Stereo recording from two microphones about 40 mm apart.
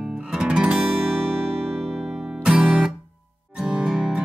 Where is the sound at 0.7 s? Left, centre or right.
Right.